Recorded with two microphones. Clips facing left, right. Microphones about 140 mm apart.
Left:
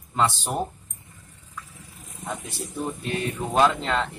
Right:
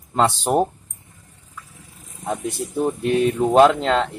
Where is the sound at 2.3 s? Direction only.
55° right (ahead or behind).